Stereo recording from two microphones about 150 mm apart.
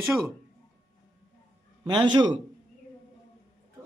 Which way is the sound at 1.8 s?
30° right (ahead or behind).